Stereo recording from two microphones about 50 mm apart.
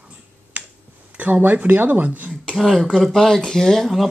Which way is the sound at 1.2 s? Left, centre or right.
Right.